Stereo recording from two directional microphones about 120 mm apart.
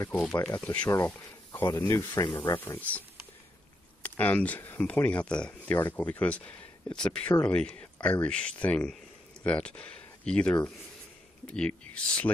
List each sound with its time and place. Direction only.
0.1 s speech: 15° left (ahead or behind)
2.2 s speech: 40° left (ahead or behind)
2.5 s speech: 20° left (ahead or behind)
4.0 s speech: 15° left (ahead or behind)